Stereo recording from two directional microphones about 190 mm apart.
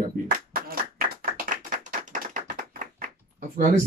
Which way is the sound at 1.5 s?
40° right (ahead or behind).